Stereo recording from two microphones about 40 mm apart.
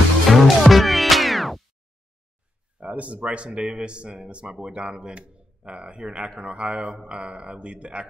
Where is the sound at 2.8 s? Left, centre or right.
Right.